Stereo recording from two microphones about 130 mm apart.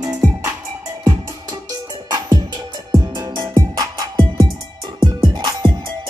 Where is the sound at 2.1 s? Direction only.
30° right (ahead or behind).